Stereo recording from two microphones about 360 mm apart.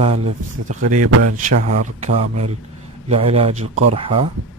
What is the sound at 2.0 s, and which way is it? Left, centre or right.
Speech, centre.